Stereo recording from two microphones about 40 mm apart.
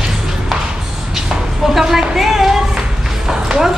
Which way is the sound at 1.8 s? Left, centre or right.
Centre.